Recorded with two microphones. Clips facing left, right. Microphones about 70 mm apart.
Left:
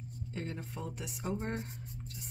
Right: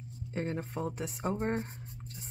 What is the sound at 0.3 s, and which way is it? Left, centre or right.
Speech, right.